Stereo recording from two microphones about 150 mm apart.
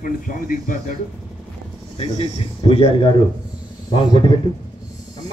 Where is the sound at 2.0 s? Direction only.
40° left (ahead or behind).